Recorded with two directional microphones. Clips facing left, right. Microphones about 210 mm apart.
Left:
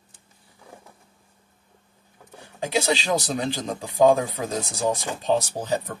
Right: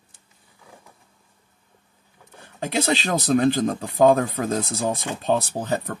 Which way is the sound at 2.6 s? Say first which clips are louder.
Right 1 dB; 50° right (ahead or behind).